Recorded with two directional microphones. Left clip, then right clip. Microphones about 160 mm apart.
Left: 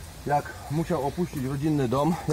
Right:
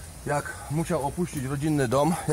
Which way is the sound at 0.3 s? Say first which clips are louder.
Left 2 dB; 15° right (ahead or behind).